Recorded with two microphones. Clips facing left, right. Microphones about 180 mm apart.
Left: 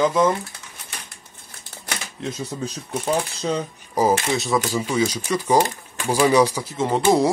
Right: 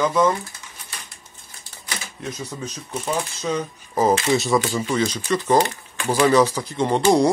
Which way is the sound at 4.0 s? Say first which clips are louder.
Even; 15° left (ahead or behind).